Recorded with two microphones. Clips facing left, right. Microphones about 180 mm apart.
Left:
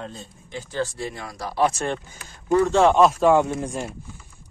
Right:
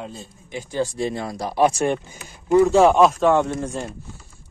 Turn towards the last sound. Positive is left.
turn(degrees=10)  # may be behind; listen again after turning